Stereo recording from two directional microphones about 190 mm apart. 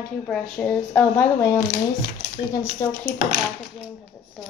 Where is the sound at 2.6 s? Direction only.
15° left (ahead or behind).